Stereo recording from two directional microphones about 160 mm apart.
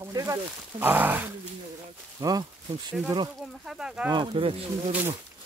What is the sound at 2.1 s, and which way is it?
Speech, 25° right (ahead or behind).